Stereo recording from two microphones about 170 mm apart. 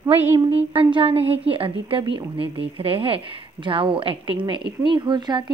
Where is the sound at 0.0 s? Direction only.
15° right (ahead or behind).